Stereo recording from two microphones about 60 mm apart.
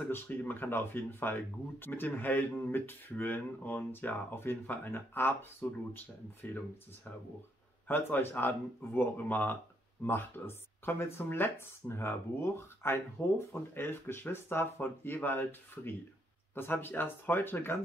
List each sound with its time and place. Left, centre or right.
0.0 s speech: left
8.2 s speech: left